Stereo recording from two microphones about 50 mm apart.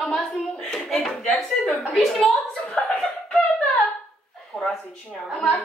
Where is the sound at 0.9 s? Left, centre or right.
Centre.